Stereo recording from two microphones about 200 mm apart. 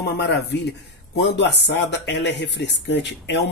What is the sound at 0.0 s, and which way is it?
A man's voice, 55° left (ahead or behind).